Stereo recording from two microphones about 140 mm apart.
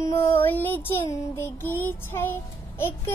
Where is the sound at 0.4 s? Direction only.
15° left (ahead or behind).